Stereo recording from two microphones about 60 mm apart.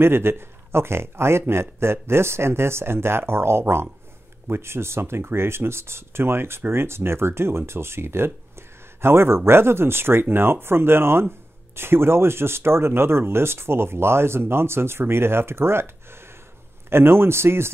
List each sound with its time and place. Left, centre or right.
0.0 s speech: right